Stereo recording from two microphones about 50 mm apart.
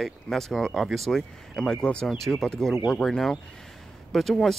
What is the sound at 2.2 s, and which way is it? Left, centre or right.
Speech, centre.